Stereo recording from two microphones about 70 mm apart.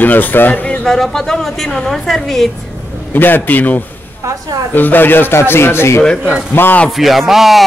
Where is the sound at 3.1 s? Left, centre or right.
Left.